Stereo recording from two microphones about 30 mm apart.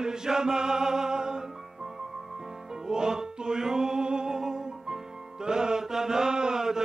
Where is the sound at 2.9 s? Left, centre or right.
Right.